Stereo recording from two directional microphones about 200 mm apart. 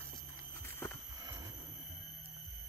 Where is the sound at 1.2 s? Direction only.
20° right (ahead or behind).